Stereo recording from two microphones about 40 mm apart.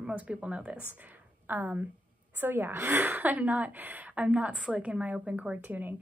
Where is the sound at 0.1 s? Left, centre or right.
Right.